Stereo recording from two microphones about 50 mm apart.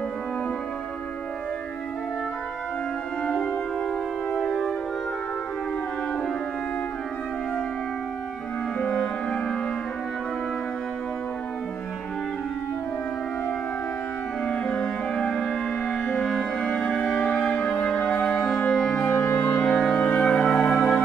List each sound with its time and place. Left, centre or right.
8.7 s music: left
14.4 s music: left
18.7 s music: centre
19.0 s music: left
19.6 s music: centre
20.0 s music: left
20.2 s music: centre
20.6 s music: left